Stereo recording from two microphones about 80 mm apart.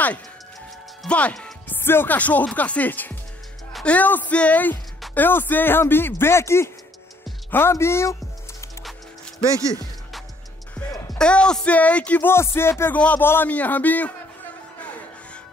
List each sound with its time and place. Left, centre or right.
1.0 s speech: centre; by 6.7 s left
7.7 s music: left
11.1 s speech: centre
12.3 s speech: left
13.0 s speech: centre